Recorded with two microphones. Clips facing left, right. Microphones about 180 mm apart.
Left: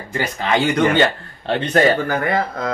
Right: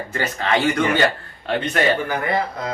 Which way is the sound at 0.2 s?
20° left (ahead or behind).